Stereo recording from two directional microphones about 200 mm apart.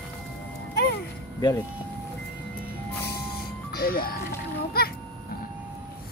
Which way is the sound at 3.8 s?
50° left (ahead or behind).